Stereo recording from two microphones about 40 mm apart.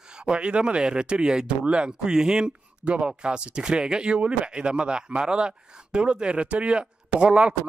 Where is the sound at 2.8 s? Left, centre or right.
Right.